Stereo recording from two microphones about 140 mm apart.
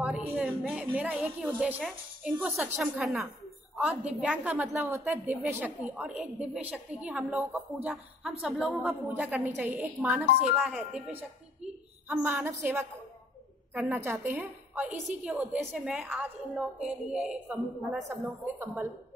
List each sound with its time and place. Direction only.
0.0 s a sound: 10° right (ahead or behind)
0.7 s a woman's voice: 10° right (ahead or behind)
18.4 s a woman's voice: 15° right (ahead or behind)